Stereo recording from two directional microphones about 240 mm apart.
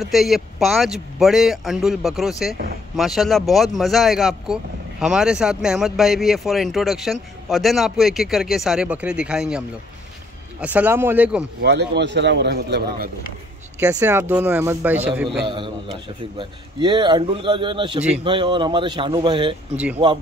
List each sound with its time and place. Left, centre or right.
0.0 s speech: centre
10.6 s speech: centre
11.6 s a man's voice: right
13.7 s speech: centre
15.4 s a man's voice: centre
19.7 s speech: centre